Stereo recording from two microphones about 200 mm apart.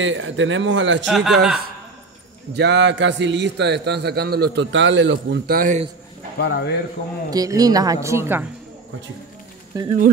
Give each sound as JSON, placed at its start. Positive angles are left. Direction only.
{"t": 0.0, "sound": "a man's voice", "side_deg": -70}
{"t": 1.0, "sound": "speech", "side_deg": 0}
{"t": 2.5, "sound": "a man's voice", "side_deg": -60}
{"t": 6.4, "sound": "a man's voice", "side_deg": 55}
{"t": 7.2, "sound": "a woman's voice", "side_deg": -20}
{"t": 9.7, "sound": "a woman's voice", "side_deg": -15}